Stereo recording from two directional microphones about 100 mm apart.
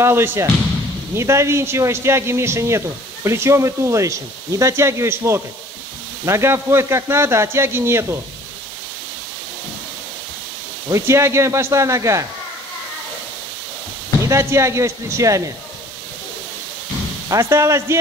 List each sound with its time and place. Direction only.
0.0 s speech: 25° right (ahead or behind)
10.9 s speech: 25° right (ahead or behind)
14.2 s speech: 30° right (ahead or behind)
17.3 s speech: 30° right (ahead or behind)